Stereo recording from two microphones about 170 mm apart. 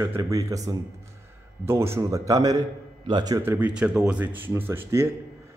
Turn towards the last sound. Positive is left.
turn(degrees=-15)  # may be behind; listen again after turning